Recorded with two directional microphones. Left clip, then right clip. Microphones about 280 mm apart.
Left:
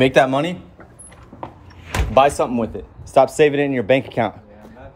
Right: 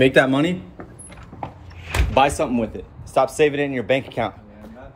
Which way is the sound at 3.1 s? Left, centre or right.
Left.